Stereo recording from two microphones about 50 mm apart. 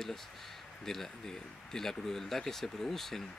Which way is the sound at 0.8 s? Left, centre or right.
Centre.